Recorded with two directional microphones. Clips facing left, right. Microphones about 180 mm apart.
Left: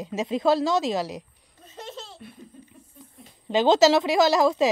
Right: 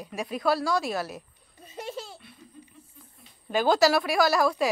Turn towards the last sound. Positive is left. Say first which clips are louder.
# left 4 dB
turn(degrees=20)  # may be behind; listen again after turning